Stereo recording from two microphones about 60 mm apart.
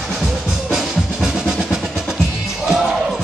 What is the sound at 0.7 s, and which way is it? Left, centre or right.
Music, centre.